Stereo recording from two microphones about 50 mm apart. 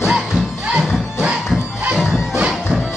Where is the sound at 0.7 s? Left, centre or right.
Centre.